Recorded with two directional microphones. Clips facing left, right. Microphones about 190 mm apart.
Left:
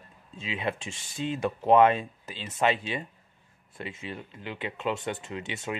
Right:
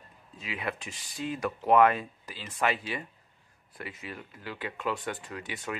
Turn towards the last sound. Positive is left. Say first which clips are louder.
# left 3 dB
turn(degrees=25)  # may be behind; listen again after turning